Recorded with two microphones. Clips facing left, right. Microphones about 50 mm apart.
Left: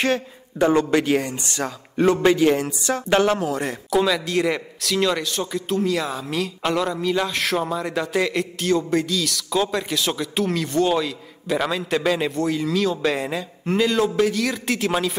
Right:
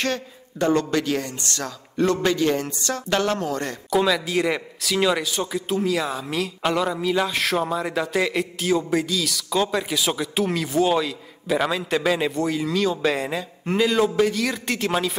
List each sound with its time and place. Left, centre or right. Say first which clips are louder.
0.0 s speech: left 4 dB; centre